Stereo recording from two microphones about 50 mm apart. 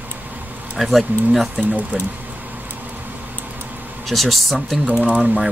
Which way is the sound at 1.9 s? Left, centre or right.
Centre.